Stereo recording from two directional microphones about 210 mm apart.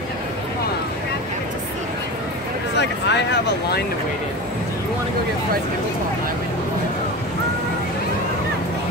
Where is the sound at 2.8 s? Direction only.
55° left (ahead or behind).